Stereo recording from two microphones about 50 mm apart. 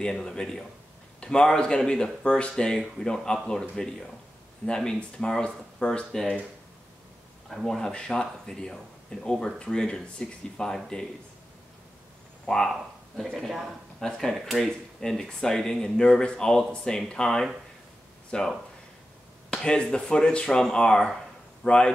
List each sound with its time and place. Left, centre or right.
0.0 s speech: centre
7.4 s speech: centre
12.4 s speech: centre
13.9 s speech: centre
19.5 s speech: centre